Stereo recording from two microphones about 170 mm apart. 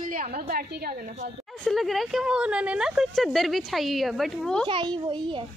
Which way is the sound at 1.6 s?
Centre (ahead or behind).